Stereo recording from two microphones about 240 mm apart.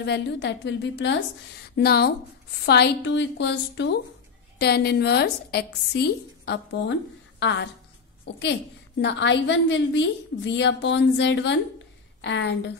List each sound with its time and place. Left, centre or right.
0.0 s a woman's voice: left
9.0 s a woman's voice: left